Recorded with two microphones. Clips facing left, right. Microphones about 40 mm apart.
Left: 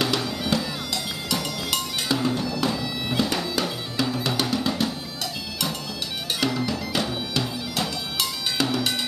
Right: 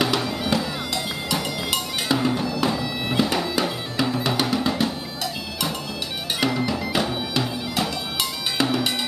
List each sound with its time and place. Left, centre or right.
0.0 s music: centre
6.4 s music: centre